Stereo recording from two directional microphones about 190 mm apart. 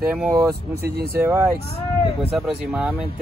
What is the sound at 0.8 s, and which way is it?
Speech, 55° right (ahead or behind).